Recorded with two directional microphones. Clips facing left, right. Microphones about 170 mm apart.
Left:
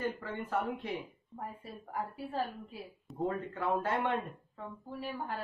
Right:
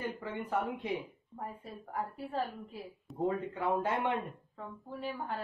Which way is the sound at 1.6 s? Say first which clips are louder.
Even; centre (ahead or behind).